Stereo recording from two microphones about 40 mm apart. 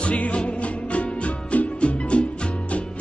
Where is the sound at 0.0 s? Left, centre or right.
Left.